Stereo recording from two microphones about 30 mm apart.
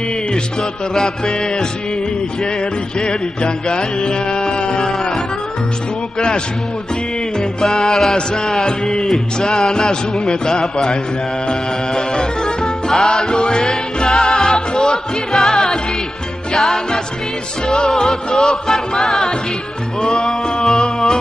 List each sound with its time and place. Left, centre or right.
0.3 s music: centre
3.0 s music: left
6.1 s music: left
7.6 s music: centre
12.1 s music: left; by 20.7 s centre